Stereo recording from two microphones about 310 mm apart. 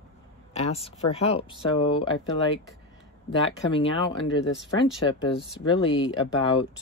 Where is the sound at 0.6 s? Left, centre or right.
Centre.